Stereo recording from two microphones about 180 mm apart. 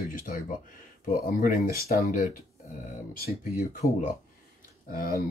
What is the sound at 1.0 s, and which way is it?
Speech, 50° left (ahead or behind).